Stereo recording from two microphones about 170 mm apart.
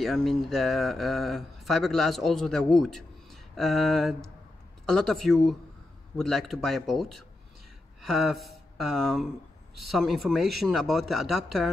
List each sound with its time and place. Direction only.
0.0 s speech: centre (ahead or behind)